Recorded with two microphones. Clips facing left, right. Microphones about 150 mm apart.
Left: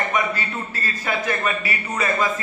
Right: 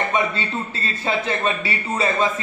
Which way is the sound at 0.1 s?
25° right (ahead or behind).